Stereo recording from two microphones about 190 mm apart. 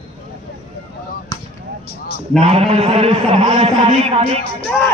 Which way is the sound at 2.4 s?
30° right (ahead or behind).